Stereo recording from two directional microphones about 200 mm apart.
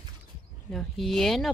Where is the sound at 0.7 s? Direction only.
Centre (ahead or behind).